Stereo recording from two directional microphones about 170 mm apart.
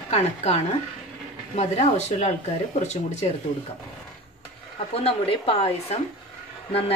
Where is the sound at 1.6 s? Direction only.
40° left (ahead or behind).